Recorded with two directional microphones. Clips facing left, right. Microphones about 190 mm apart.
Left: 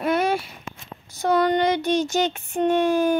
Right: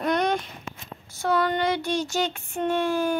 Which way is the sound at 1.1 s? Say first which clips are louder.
Left 4 dB; 20° left (ahead or behind).